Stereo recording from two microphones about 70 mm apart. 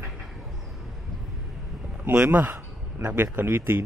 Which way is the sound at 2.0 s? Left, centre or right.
Right.